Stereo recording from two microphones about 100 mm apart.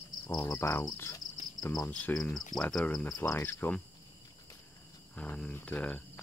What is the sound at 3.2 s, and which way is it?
Cricket, 20° left (ahead or behind).